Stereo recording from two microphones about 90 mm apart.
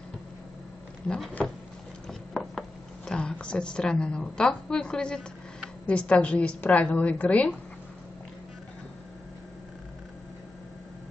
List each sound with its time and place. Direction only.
1.0 s speech: 10° left (ahead or behind)
2.0 s a sound: 5° left (ahead or behind)
3.1 s a woman's voice: 10° left (ahead or behind)